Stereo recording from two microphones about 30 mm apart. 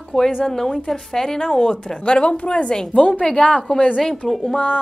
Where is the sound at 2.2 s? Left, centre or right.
Left.